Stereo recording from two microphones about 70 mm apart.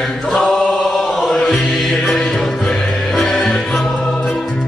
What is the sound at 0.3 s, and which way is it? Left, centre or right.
Chant, centre.